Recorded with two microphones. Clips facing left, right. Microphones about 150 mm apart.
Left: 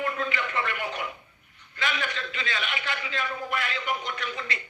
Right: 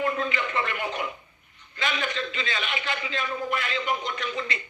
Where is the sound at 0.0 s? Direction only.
20° right (ahead or behind).